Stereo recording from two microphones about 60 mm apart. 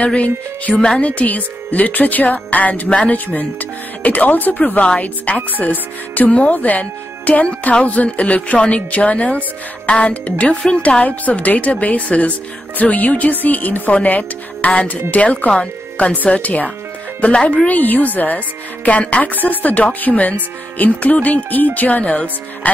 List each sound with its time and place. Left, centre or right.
0.0 s speech: left
0.7 s a woman's voice: centre
1.0 s speech: left